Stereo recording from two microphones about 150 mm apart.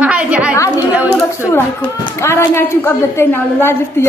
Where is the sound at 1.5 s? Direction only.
15° left (ahead or behind).